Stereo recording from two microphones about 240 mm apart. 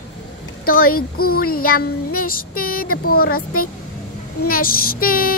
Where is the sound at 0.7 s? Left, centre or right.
Left.